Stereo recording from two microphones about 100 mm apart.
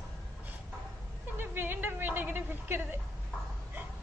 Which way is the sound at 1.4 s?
20° right (ahead or behind).